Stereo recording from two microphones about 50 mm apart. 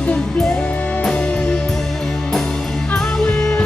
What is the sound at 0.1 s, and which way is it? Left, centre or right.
Music, centre.